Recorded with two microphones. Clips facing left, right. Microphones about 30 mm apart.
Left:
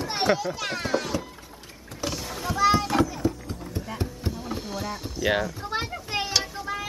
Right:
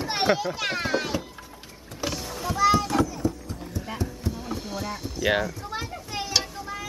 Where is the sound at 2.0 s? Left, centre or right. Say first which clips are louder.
Even; centre.